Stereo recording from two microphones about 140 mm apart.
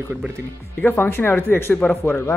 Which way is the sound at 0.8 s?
15° left (ahead or behind).